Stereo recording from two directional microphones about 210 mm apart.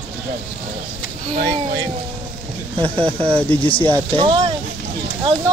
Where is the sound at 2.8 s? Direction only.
25° right (ahead or behind).